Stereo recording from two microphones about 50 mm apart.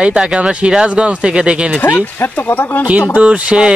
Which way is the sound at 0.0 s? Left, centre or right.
Centre.